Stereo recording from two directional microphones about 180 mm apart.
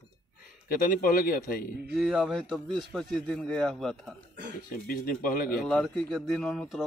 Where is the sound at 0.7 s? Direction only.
50° left (ahead or behind).